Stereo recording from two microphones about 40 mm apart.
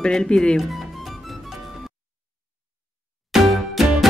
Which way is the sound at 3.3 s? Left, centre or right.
Centre.